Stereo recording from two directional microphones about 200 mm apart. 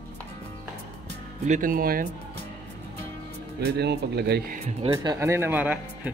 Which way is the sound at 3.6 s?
55° right (ahead or behind).